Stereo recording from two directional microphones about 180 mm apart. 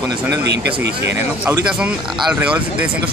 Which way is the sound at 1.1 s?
15° right (ahead or behind).